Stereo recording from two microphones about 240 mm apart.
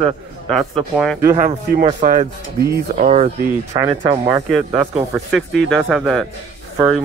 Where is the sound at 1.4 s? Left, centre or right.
Right.